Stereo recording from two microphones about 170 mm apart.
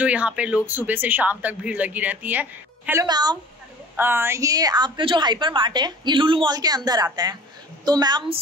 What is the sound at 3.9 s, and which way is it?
A woman's voice, 15° right (ahead or behind).